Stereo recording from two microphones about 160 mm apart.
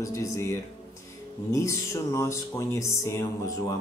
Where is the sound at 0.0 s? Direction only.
20° left (ahead or behind).